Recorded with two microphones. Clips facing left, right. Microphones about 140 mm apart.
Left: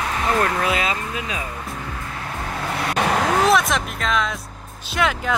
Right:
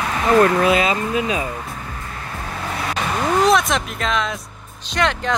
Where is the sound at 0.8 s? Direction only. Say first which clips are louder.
Right 6 dB; 15° right (ahead or behind).